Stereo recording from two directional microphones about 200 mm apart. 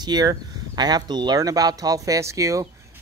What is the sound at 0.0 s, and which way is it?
Speech, 20° right (ahead or behind).